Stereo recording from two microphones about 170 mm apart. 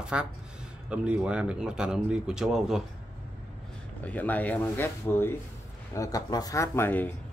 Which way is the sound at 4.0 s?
10° left (ahead or behind).